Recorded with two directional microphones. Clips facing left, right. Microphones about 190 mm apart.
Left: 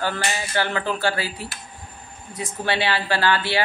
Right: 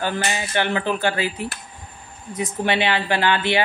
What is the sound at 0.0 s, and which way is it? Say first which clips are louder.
A woman's voice: right 2 dB; 20° right (ahead or behind).